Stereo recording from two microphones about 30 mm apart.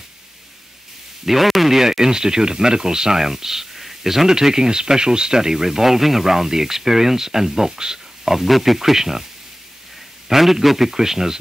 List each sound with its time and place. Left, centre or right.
1.2 s speech: centre
1.8 s speech: centre
8.3 s speech: centre
10.4 s speech: centre